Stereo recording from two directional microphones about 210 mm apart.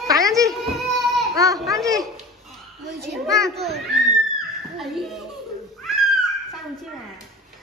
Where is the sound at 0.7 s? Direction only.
Centre (ahead or behind).